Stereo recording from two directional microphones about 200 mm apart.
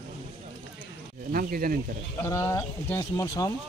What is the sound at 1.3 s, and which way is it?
Speech, 45° right (ahead or behind).